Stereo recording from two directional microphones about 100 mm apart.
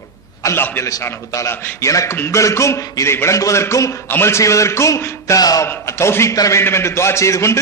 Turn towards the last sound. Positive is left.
turn(degrees=30)  # may be behind; listen again after turning